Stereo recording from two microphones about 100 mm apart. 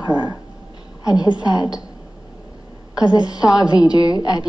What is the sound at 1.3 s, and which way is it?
Speech, 40° left (ahead or behind).